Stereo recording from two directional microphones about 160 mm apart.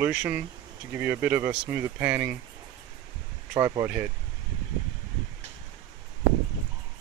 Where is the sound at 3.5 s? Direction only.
20° right (ahead or behind).